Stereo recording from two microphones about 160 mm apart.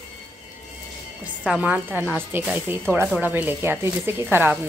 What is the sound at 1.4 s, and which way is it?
A woman's voice, 10° right (ahead or behind).